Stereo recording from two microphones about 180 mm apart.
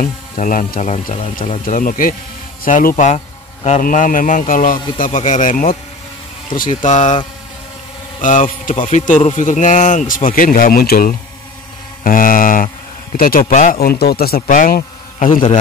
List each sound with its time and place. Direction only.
0.0 s a man's voice: 50° left (ahead or behind)
1.6 s a man's voice: 50° left (ahead or behind)
8.2 s a man's voice: 45° left (ahead or behind)
13.7 s speech: 60° left (ahead or behind)